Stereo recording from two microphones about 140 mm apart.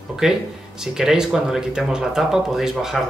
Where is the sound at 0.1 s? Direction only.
5° right (ahead or behind).